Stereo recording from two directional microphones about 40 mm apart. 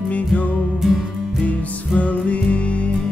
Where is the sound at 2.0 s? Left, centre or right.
Left.